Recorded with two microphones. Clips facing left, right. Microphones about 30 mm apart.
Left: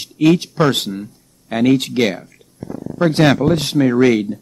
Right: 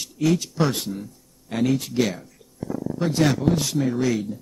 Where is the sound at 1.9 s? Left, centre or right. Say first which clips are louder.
Left 6 dB; left.